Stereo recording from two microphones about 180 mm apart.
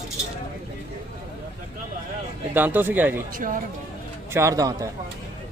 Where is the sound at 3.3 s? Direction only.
50° right (ahead or behind).